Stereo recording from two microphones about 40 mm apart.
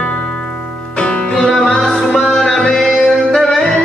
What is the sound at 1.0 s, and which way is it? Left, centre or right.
Music, left.